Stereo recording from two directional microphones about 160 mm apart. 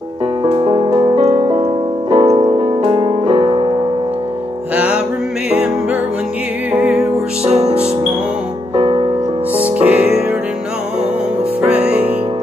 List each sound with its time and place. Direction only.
0.5 s music: 30° right (ahead or behind)
0.8 s music: 40° right (ahead or behind)
4.7 s music: 10° right (ahead or behind)
6.7 s music: 10° right (ahead or behind)
7.6 s music: 40° right (ahead or behind)
9.6 s music: 10° right (ahead or behind)
11.6 s music: 10° right (ahead or behind)